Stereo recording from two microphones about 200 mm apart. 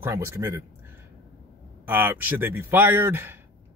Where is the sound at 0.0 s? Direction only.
15° right (ahead or behind).